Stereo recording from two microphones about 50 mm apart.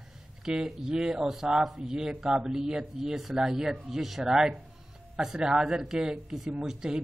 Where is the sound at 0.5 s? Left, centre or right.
Centre.